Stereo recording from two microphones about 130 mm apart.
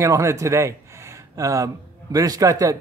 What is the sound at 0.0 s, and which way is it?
A man's voice, 25° right (ahead or behind).